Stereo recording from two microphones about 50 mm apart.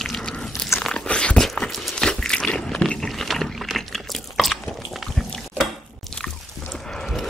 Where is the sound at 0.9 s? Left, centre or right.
Centre.